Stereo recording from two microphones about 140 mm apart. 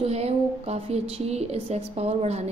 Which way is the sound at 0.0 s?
50° right (ahead or behind).